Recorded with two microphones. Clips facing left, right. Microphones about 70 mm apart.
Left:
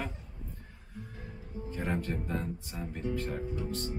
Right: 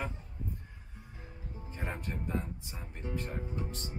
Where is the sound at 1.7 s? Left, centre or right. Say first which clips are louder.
Left 6 dB; centre.